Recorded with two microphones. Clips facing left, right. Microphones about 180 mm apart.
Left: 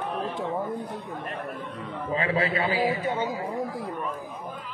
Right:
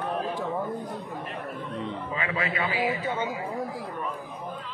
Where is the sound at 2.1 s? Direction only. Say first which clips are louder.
Left 7 dB; 35° left (ahead or behind).